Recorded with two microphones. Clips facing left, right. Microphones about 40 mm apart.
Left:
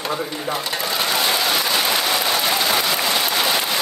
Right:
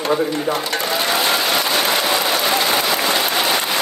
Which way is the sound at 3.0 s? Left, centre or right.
Centre.